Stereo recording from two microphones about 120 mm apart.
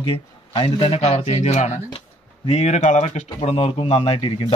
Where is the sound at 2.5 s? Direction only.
65° left (ahead or behind).